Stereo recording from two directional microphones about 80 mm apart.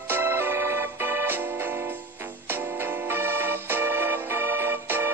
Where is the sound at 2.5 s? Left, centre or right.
Right.